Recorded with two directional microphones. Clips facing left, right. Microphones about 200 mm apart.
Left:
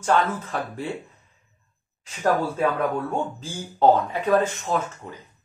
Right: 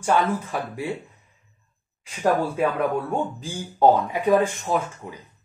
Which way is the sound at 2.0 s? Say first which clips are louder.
Right 1 dB; 10° right (ahead or behind).